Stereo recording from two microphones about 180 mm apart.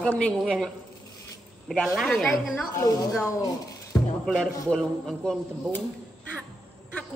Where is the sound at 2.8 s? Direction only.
20° left (ahead or behind).